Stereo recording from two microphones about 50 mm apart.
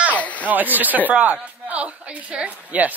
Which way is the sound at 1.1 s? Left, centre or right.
Right.